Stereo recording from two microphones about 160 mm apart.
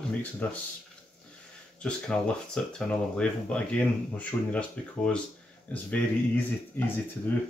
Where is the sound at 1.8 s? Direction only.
5° left (ahead or behind).